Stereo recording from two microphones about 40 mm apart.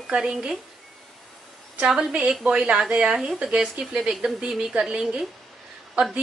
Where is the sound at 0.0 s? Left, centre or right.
Right.